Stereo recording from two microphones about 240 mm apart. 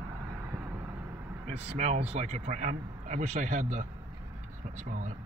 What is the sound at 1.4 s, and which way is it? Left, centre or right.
Speech, right.